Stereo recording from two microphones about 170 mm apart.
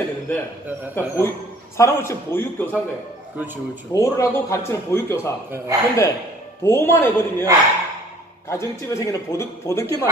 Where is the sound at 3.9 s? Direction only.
20° left (ahead or behind).